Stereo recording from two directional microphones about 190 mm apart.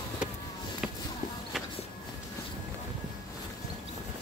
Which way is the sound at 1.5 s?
Centre (ahead or behind).